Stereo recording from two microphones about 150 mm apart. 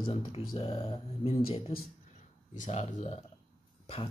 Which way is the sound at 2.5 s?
50° left (ahead or behind).